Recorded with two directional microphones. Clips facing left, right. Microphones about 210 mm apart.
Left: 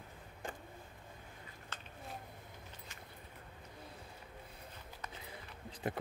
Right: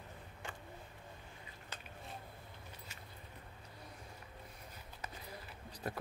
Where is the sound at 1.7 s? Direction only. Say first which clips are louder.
Even; 15° right (ahead or behind).